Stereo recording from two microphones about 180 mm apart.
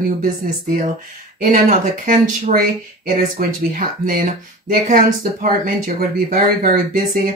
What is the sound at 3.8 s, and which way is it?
Speech, 50° right (ahead or behind).